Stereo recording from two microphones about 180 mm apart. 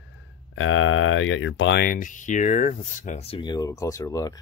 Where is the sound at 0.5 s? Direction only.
90° left.